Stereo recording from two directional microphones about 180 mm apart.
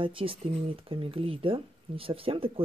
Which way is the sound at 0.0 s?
30° right (ahead or behind).